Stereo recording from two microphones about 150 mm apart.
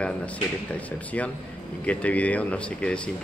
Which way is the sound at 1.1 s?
10° left (ahead or behind).